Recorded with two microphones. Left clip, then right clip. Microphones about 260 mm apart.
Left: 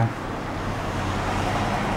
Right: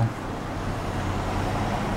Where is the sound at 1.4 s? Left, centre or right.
Left.